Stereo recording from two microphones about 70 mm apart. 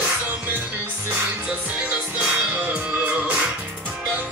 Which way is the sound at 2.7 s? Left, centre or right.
Right.